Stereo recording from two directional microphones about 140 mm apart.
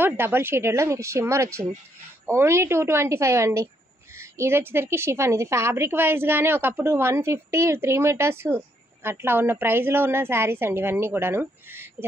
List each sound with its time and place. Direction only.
0.0 s a woman's voice: 15° right (ahead or behind)